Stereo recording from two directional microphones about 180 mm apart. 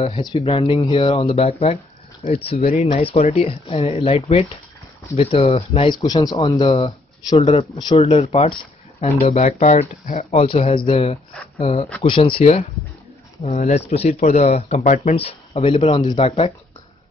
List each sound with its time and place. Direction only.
0.0 s speech: 30° left (ahead or behind)